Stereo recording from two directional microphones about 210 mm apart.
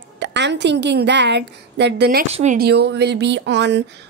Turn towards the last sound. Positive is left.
turn(degrees=-55)  # may be behind; listen again after turning